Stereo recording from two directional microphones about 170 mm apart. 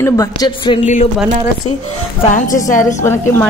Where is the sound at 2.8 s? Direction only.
15° left (ahead or behind).